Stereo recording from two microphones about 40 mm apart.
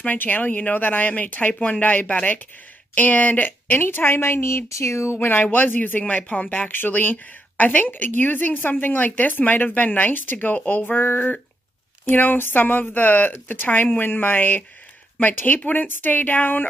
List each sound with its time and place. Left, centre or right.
0.0 s a woman's voice: left
5.2 s a woman's voice: left